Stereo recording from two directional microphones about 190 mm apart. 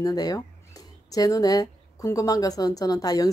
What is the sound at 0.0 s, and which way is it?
Speech, 20° left (ahead or behind).